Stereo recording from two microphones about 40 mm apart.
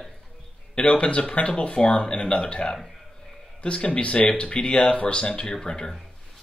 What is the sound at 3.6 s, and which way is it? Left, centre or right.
Speech, left.